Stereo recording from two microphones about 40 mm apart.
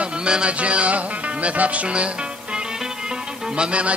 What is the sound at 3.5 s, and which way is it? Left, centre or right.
Speech, right.